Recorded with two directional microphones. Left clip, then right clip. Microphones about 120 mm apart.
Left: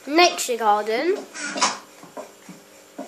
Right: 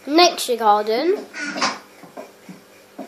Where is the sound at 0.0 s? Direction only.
5° right (ahead or behind).